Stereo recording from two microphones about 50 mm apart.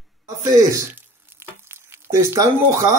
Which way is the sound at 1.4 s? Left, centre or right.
Right.